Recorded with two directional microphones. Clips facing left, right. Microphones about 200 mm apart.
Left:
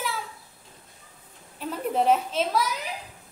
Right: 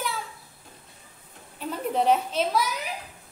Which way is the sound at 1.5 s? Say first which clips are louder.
Even; centre (ahead or behind).